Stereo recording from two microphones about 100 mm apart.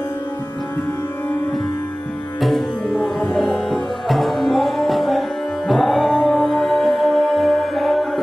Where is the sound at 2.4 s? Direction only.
Centre (ahead or behind).